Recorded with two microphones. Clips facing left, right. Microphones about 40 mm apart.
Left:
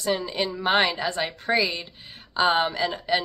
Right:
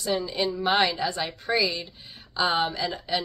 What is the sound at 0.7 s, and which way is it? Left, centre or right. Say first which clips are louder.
A woman's voice: left 4 dB; left.